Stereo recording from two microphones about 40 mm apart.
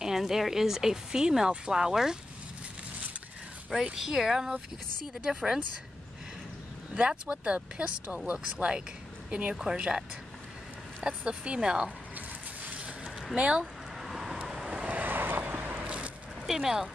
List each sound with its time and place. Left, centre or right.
0.0 s speech: centre
3.8 s speech: centre
7.0 s speech: right
11.0 s speech: centre
13.4 s speech: right
13.9 s vehicle: centre
14.4 s vehicle: right
14.8 s vehicle: right
15.0 s vehicle: right
15.8 s vehicle: right
16.4 s speech: centre